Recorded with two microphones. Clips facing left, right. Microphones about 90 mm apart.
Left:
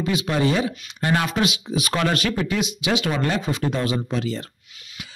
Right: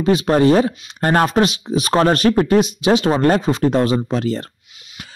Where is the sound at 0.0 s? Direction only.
40° right (ahead or behind).